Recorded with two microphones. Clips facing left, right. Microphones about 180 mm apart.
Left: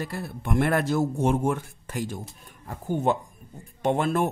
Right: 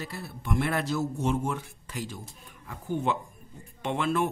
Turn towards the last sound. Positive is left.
turn(degrees=45)  # may be behind; listen again after turning